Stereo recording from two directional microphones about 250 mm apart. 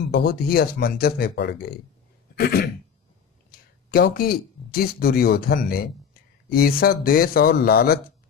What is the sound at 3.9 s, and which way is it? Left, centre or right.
Speech, left.